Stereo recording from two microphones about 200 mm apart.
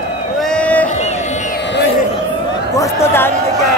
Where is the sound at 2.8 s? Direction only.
15° left (ahead or behind).